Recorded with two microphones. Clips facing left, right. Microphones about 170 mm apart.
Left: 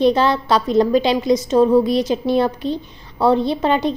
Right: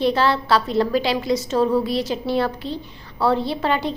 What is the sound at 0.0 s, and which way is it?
A woman's voice, 20° left (ahead or behind).